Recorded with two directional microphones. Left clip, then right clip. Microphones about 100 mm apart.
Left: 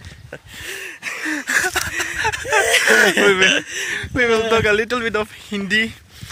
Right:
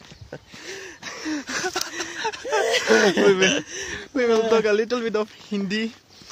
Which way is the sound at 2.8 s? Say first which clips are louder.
Left 3 dB; 10° left (ahead or behind).